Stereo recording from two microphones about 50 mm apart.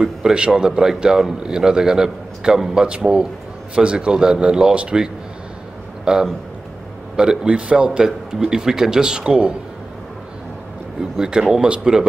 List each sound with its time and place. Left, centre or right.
0.0 s a man's voice: centre
11.0 s speech: centre